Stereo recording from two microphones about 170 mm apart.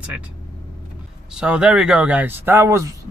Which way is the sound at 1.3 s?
5° right (ahead or behind).